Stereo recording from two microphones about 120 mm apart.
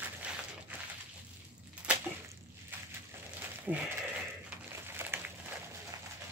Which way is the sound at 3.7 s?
10° left (ahead or behind).